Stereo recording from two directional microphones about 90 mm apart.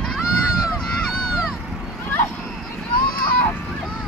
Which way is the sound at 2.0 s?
25° left (ahead or behind).